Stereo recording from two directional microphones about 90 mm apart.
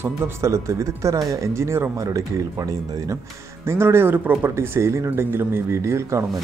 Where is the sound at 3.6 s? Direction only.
30° right (ahead or behind).